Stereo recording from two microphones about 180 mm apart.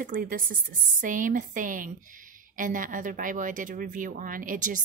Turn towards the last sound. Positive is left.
turn(degrees=-45)  # may be behind; listen again after turning